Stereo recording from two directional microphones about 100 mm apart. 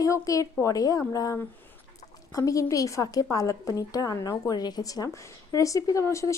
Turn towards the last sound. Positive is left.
turn(degrees=30)  # may be behind; listen again after turning